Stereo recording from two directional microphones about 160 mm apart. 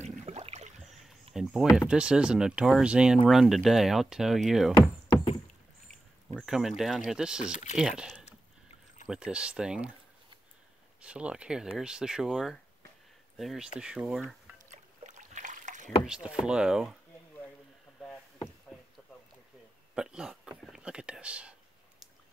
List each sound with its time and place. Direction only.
0.2 s a sound: 45° right (ahead or behind)
0.7 s rowboat: centre (ahead or behind)
1.3 s speech: 5° right (ahead or behind)
6.3 s a sound: 5° right (ahead or behind)
6.8 s speech: centre (ahead or behind)
8.3 s a sound: 45° left (ahead or behind)
9.0 s speech: 5° right (ahead or behind)
11.0 s speech: 5° right (ahead or behind)
14.7 s rowboat: 50° right (ahead or behind)
16.1 s speech: 5° right (ahead or behind)
20.0 s speech: 5° right (ahead or behind)